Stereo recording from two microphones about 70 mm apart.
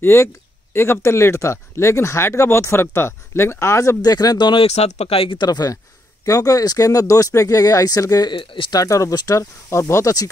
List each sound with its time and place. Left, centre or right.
0.0 s speech: left
4.0 s speech: left
6.2 s speech: left